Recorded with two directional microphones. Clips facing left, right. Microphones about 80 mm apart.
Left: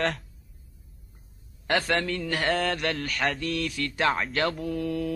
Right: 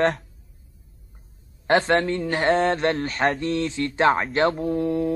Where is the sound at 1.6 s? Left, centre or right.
Right.